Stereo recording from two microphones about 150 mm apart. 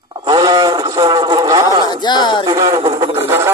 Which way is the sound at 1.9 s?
30° left (ahead or behind).